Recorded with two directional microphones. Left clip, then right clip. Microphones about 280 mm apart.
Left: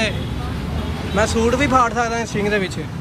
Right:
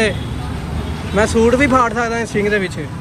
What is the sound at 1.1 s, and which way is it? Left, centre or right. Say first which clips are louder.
Speech: right 5 dB; centre.